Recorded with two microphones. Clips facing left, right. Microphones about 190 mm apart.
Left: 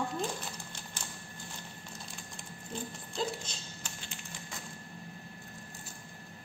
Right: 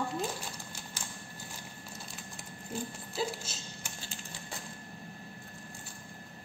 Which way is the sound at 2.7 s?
5° right (ahead or behind).